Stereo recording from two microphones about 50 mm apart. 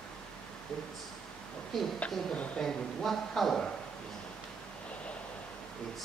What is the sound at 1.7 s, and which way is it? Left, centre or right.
Speech, centre.